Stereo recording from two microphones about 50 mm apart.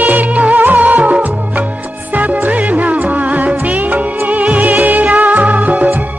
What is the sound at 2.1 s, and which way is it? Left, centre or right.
Music of bollywood, right.